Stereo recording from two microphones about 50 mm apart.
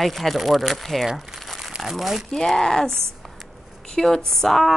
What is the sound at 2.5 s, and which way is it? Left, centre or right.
Speech, centre.